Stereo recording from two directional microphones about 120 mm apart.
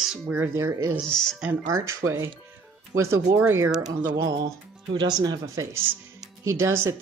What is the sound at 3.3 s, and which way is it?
Speech, 20° right (ahead or behind).